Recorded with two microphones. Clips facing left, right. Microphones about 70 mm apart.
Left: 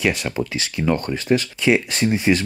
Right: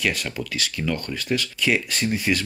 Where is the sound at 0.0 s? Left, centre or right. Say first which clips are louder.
Left 5 dB; left.